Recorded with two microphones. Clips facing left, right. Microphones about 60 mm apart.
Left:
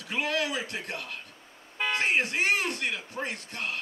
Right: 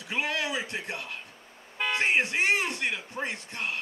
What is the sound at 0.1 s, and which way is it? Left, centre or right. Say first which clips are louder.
A man's voice: left 1 dB; centre.